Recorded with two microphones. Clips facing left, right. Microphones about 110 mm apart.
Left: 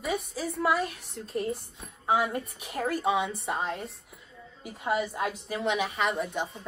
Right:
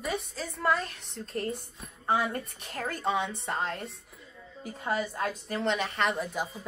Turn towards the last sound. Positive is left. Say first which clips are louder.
# left 1 dB
turn(degrees=0)  # may be behind; listen again after turning